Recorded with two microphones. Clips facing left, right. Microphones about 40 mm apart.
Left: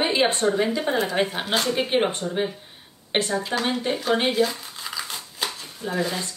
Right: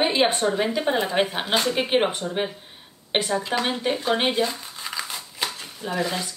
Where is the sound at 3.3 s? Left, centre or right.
Right.